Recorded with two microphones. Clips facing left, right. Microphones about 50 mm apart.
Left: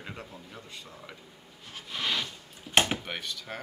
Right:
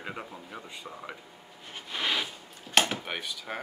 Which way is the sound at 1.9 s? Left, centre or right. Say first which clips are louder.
Right 1 dB; centre.